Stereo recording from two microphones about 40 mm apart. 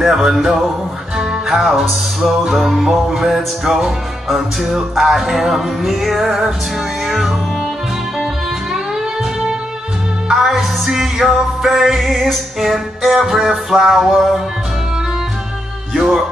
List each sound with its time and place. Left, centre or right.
0.0 s music: centre
10.3 s music: centre
16.0 s music: centre